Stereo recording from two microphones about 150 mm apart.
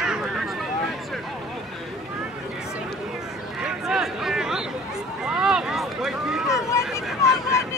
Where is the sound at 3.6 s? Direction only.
5° right (ahead or behind).